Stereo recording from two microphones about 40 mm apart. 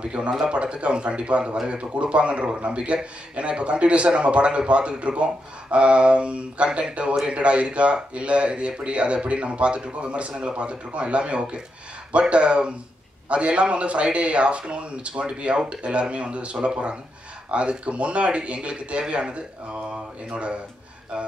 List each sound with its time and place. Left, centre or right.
0.0 s a man's voice: right